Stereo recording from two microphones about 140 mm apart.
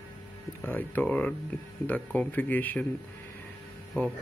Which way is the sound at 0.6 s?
15° left (ahead or behind).